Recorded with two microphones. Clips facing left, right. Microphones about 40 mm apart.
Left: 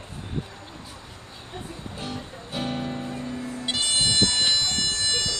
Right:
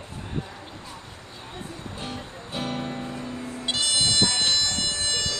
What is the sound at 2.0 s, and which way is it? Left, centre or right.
Music, right.